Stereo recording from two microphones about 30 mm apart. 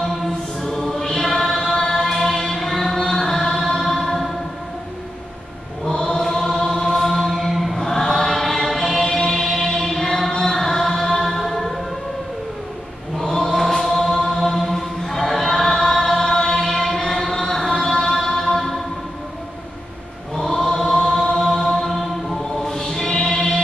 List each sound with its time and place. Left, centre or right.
0.7 s choir: centre
1.2 s choir: centre
1.8 s choir: centre
2.0 s music: centre
5.9 s chant: left; by 7.7 s centre
7.7 s choir: centre
13.2 s chant: centre
14.5 s choir: centre
16.3 s chant: centre
18.1 s music: centre
20.3 s chant: centre
21.5 s choir: centre